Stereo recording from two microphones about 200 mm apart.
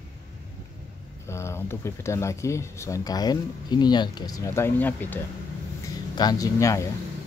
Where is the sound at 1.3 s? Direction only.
15° left (ahead or behind).